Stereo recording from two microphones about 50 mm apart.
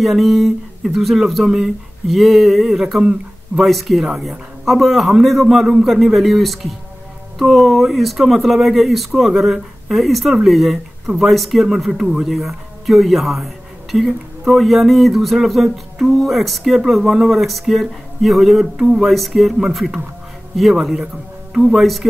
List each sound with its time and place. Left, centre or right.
0.0 s speech: centre